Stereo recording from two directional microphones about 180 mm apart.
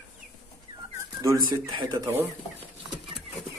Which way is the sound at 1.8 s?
20° right (ahead or behind).